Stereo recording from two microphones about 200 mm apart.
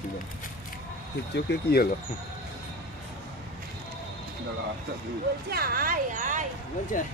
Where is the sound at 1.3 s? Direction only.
55° left (ahead or behind).